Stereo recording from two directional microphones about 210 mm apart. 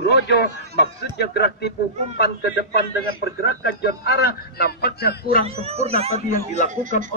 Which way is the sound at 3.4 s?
50° left (ahead or behind).